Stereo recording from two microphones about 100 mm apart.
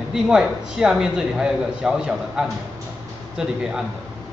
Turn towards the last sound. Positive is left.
turn(degrees=-5)  # may be behind; listen again after turning